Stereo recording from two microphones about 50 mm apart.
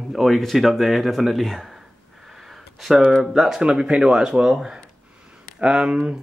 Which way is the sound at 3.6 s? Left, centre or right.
Centre.